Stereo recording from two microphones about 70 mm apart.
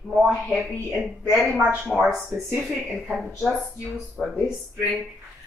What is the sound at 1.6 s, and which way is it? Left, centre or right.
Speech, centre.